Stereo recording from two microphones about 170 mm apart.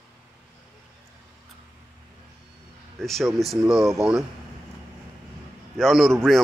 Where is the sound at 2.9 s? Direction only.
Centre (ahead or behind).